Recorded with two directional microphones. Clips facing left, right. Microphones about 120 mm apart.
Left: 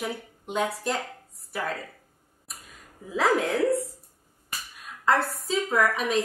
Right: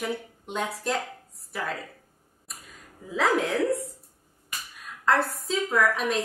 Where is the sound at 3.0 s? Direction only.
Centre (ahead or behind).